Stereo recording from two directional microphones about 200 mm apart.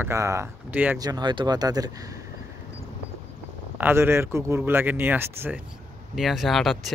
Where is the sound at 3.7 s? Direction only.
10° right (ahead or behind).